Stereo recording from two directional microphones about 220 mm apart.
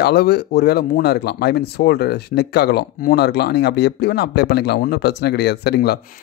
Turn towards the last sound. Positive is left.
turn(degrees=50)  # may be behind; listen again after turning